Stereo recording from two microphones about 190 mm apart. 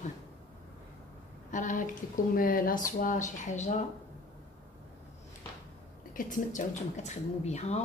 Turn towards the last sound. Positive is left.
turn(degrees=35)  # may be behind; listen again after turning